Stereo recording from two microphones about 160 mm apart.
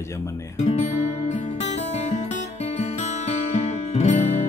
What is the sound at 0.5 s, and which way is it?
Speech, 40° left (ahead or behind).